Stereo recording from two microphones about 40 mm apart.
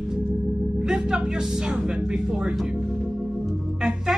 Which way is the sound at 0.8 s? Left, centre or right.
Centre.